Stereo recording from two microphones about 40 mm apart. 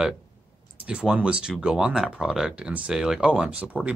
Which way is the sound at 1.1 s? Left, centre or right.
Right.